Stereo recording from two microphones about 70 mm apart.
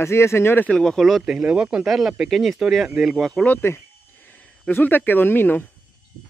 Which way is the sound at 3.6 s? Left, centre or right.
Left.